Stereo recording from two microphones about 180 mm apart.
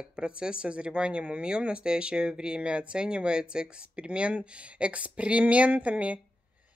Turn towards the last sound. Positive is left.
turn(degrees=-5)  # may be behind; listen again after turning